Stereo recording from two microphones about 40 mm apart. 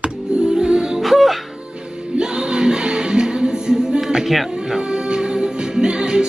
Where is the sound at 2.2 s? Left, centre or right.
Right.